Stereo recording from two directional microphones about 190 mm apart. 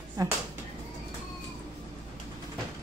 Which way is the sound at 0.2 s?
20° right (ahead or behind).